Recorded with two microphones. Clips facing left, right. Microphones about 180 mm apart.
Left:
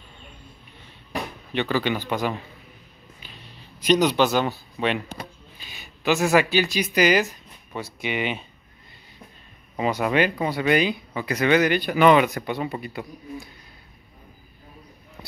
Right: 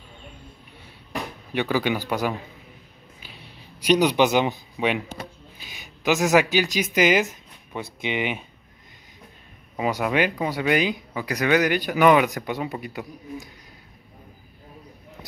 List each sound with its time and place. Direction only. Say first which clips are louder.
1.5 s speech: right 1 dB; 10° right (ahead or behind)
3.2 s a sound: right 1 dB; 10° right (ahead or behind)
5.6 s speech: even; 15° right (ahead or behind)
9.8 s speech: left 1 dB; 10° right (ahead or behind)